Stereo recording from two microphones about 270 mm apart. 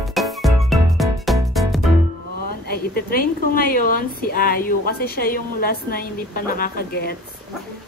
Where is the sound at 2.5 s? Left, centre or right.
Left.